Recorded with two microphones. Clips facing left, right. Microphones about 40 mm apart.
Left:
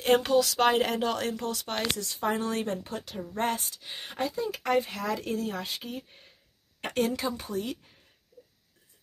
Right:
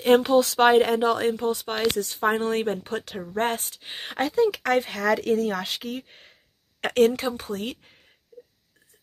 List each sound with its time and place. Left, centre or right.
0.3 s a woman's voice: right
0.7 s speech: centre
2.0 s a woman's voice: right
4.1 s speech: right